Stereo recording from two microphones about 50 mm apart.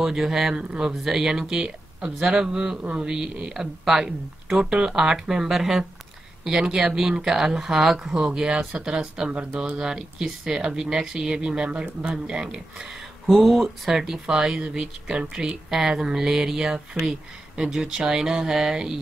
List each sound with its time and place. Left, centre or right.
0.0 s speech: centre
0.6 s speech: centre
8.2 s speech: centre
13.3 s speech: centre
13.6 s speech: centre